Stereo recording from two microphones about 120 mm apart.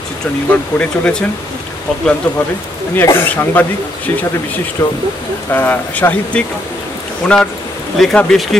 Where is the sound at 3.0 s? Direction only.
20° left (ahead or behind).